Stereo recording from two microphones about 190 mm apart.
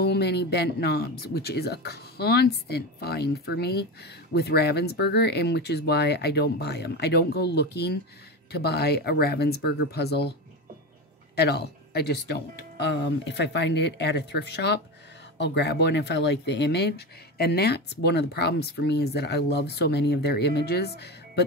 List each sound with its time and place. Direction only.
0.0 s speech: 60° left (ahead or behind)
11.3 s speech: 60° left (ahead or behind)